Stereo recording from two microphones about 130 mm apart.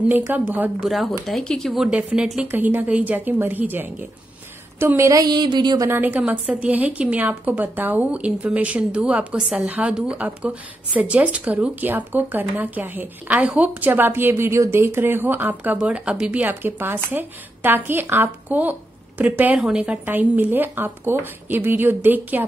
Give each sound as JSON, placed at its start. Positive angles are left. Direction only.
{"t": 0.6, "sound": "a woman's voice", "side_deg": -5}
{"t": 5.9, "sound": "a woman's voice", "side_deg": -15}